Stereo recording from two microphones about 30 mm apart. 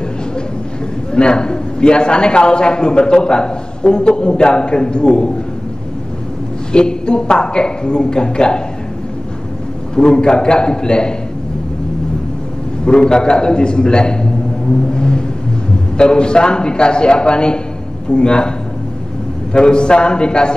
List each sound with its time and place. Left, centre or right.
1.1 s a man's voice: left
6.7 s a woman's voice: left
9.9 s a woman's voice: left
12.8 s a woman's voice: left
14.9 s vehicle: left
16.0 s a man's voice: left
19.5 s a woman's voice: left